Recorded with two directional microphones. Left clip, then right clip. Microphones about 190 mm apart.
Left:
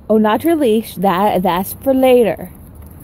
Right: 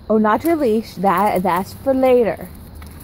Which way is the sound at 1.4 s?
45° left (ahead or behind).